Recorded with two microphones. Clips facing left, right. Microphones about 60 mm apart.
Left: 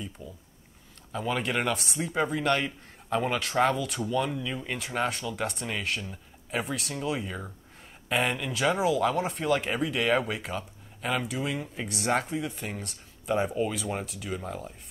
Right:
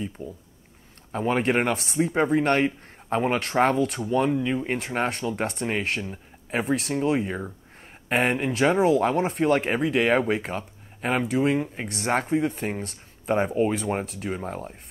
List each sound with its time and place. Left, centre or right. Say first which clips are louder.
0.2 s speech: right 7 dB; right